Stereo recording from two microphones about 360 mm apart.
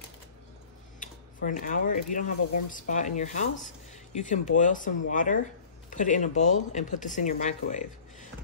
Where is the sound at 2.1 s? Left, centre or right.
Left.